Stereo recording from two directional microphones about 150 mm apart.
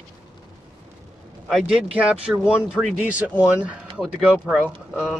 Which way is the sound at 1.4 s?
5° right (ahead or behind).